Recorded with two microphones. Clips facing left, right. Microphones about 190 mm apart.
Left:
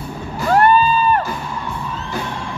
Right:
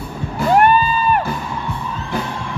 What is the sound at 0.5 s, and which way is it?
Music, 15° right (ahead or behind).